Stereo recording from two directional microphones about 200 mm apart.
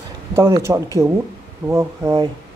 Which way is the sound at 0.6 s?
15° right (ahead or behind).